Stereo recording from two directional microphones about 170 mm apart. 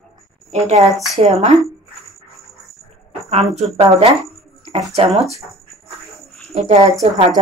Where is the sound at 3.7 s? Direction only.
35° right (ahead or behind).